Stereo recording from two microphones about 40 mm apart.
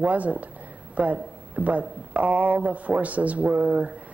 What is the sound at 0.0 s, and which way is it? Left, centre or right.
Speech, right.